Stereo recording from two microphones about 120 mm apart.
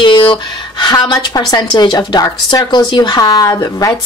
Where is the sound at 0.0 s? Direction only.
40° left (ahead or behind).